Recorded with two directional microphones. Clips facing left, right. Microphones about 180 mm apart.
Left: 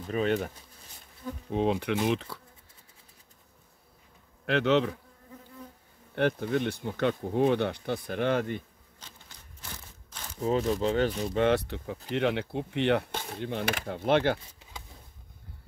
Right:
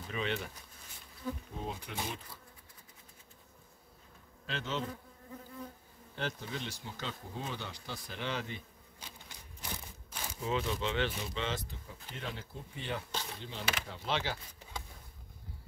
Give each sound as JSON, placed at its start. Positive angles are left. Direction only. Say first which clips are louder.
{"t": 0.1, "sound": "speech", "louder": "left 9 dB", "side_deg": 45}
{"t": 1.5, "sound": "speech", "louder": "left 15 dB", "side_deg": 75}
{"t": 4.5, "sound": "speech", "louder": "left 13 dB", "side_deg": 70}
{"t": 6.1, "sound": "speech", "louder": "left 13 dB", "side_deg": 60}
{"t": 9.0, "sound": "a sound", "louder": "right 1 dB", "side_deg": -10}
{"t": 10.4, "sound": "speech", "louder": "left 8 dB", "side_deg": 40}